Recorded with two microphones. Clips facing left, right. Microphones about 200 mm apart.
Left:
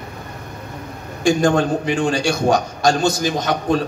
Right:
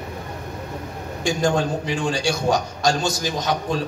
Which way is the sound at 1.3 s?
55° left (ahead or behind).